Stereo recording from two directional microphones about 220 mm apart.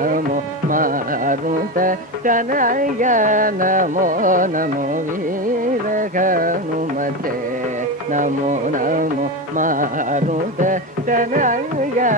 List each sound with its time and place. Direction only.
0.7 s music: 40° right (ahead or behind)
5.9 s music: 35° right (ahead or behind)
8.1 s music: 35° right (ahead or behind)